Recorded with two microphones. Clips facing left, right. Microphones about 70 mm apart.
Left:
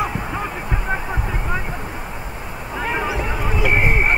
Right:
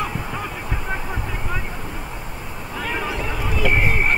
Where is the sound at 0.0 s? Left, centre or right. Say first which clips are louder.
Left 3 dB; centre.